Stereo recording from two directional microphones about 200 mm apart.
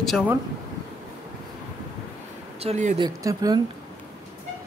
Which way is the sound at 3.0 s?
20° right (ahead or behind).